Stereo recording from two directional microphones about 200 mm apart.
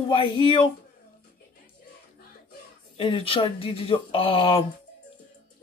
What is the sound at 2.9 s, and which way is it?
Speech, 25° left (ahead or behind).